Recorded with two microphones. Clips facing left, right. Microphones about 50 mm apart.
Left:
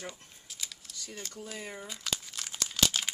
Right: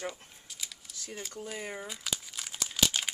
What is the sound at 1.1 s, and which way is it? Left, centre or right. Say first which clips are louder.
Crumpling: right 3 dB; centre.